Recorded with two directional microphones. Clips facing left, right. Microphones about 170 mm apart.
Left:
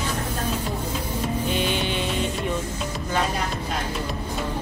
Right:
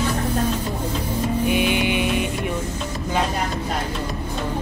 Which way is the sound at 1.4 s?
10° right (ahead or behind).